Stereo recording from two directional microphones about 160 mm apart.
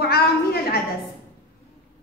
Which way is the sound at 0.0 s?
75° left (ahead or behind).